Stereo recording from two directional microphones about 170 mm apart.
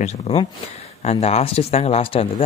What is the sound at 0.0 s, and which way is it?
Speech, 40° left (ahead or behind).